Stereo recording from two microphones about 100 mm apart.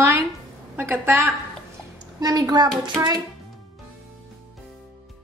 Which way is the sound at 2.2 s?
45° right (ahead or behind).